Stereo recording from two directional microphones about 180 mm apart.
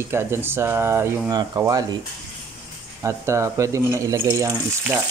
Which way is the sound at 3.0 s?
15° right (ahead or behind).